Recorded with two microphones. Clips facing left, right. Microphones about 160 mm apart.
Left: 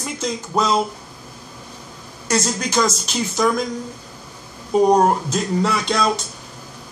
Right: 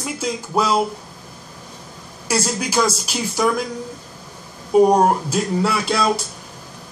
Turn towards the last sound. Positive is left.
turn(degrees=-5)  # may be behind; listen again after turning